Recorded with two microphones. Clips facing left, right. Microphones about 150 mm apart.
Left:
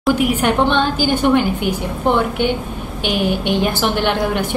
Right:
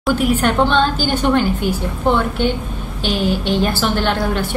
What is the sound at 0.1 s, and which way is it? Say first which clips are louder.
A woman's voice: even; 10° left (ahead or behind).